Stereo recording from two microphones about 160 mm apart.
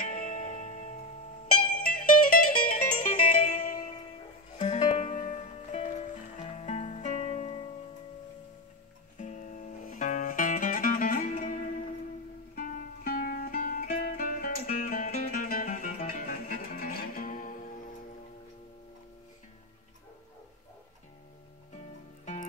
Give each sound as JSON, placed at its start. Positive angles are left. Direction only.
{"t": 0.3, "sound": "music", "side_deg": 45}
{"t": 1.7, "sound": "music", "side_deg": 60}
{"t": 4.6, "sound": "music", "side_deg": 30}
{"t": 5.1, "sound": "music", "side_deg": 50}
{"t": 9.2, "sound": "music", "side_deg": 50}